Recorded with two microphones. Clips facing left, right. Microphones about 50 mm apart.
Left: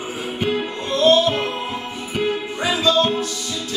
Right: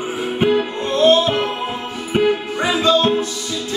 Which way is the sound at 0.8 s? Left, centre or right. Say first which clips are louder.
Right 1 dB; right.